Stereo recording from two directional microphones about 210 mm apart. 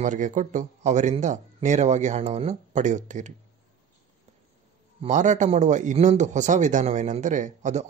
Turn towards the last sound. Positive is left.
turn(degrees=-35)  # may be behind; listen again after turning